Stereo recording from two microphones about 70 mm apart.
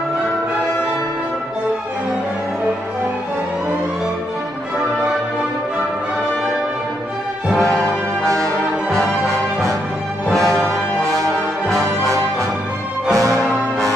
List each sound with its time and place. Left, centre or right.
8.9 s music: centre
13.1 s music: right